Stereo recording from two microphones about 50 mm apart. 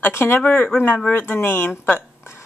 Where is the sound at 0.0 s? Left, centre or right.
Left.